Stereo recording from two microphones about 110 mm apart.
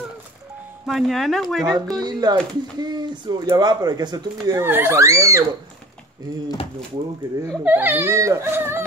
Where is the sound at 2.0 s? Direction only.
40° right (ahead or behind).